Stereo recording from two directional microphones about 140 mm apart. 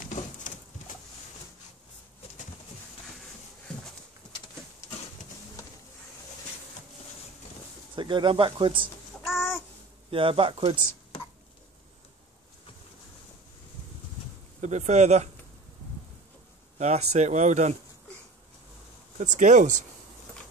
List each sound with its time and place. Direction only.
0.0 s pigeon: 70° left (ahead or behind)
7.9 s speech: 35° right (ahead or behind)
9.2 s babbling: 5° right (ahead or behind)
10.1 s speech: 40° right (ahead or behind)
14.6 s speech: 55° right (ahead or behind)
16.7 s speech: 55° right (ahead or behind)
19.1 s speech: 60° right (ahead or behind)